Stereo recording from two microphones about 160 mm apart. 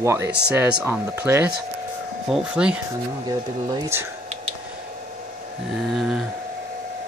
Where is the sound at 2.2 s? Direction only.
5° right (ahead or behind).